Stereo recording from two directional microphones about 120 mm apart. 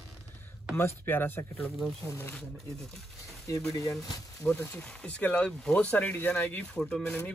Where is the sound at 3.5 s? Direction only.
25° left (ahead or behind).